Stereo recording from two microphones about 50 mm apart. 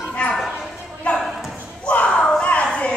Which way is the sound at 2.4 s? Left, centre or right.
Left.